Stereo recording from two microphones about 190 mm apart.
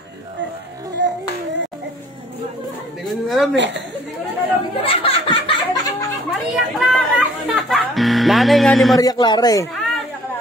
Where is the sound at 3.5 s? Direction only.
70° right (ahead or behind).